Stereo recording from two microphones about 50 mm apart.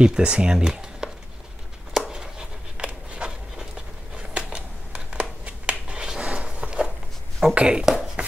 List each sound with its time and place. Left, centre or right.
0.0 s speech: centre
2.0 s a sound: centre
7.5 s speech: centre